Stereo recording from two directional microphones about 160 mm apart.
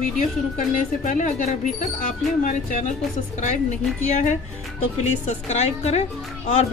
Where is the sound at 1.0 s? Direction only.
50° left (ahead or behind).